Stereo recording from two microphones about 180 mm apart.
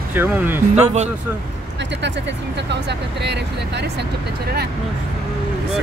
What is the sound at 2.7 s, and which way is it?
Speech, 70° right (ahead or behind).